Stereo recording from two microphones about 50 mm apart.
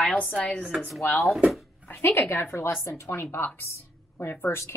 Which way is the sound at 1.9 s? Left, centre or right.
Left.